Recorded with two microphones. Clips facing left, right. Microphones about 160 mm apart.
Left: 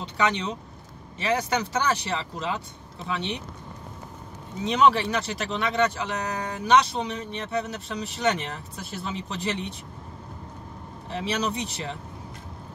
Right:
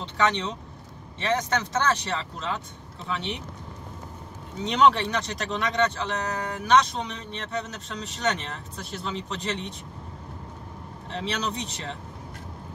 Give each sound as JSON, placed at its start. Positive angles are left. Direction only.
{"t": 0.0, "sound": "speech", "side_deg": 10}
{"t": 4.6, "sound": "speech", "side_deg": 5}
{"t": 11.1, "sound": "speech", "side_deg": 10}